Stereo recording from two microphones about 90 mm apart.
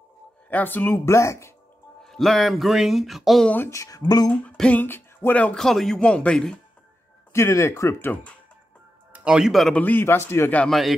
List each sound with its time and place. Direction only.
0.5 s speech: 20° left (ahead or behind)
2.0 s speech: 5° left (ahead or behind)
3.4 s speech: 20° left (ahead or behind)
3.7 s speech: 35° left (ahead or behind)
4.0 s speech: 45° left (ahead or behind)
4.3 s speech: 15° left (ahead or behind)
7.3 s speech: 30° left (ahead or behind)
8.1 s speech: 15° left (ahead or behind)
9.1 s speech: 10° right (ahead or behind)
9.8 s speech: 20° left (ahead or behind)
10.7 s speech: centre (ahead or behind)